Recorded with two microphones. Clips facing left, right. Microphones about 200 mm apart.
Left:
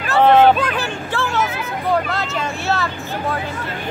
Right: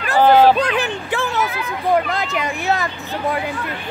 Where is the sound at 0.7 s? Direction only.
20° right (ahead or behind).